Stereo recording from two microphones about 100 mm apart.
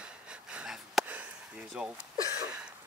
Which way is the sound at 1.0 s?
15° right (ahead or behind).